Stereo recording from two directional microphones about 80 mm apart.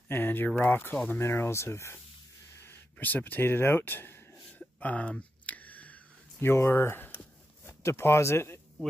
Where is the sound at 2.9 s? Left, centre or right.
Left.